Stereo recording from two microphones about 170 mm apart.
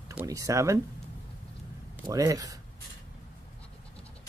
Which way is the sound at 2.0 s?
20° right (ahead or behind).